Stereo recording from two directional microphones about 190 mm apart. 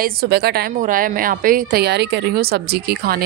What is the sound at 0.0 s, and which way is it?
A woman's voice, 55° right (ahead or behind).